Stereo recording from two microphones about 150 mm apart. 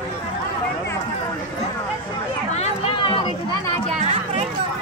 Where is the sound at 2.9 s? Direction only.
35° left (ahead or behind).